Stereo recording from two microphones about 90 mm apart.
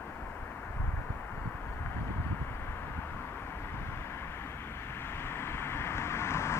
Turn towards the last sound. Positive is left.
turn(degrees=30)  # may be behind; listen again after turning